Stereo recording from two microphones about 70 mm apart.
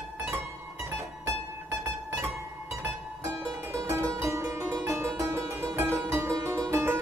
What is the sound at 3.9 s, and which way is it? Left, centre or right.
Music, right.